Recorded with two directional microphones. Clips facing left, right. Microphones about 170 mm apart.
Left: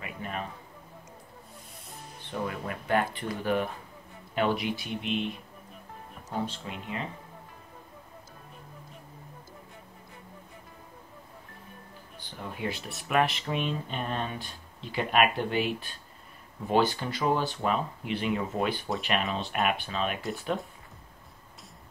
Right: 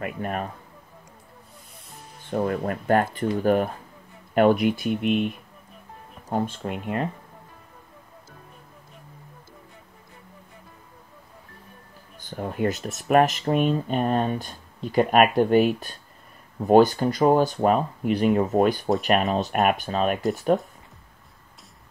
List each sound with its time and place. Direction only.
0.0 s speech: 55° right (ahead or behind)
2.2 s speech: 45° right (ahead or behind)
6.3 s speech: 50° right (ahead or behind)
12.2 s speech: 45° right (ahead or behind)